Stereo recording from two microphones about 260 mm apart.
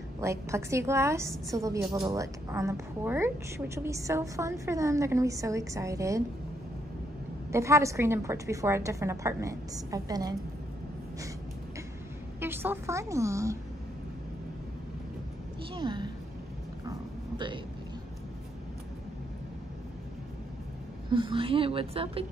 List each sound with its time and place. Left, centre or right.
0.2 s a woman's voice: centre
7.5 s a woman's voice: centre
12.4 s a woman's voice: centre
15.7 s a woman's voice: centre
21.1 s a woman's voice: centre